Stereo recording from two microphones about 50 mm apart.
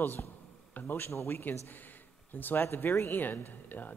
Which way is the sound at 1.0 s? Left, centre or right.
Left.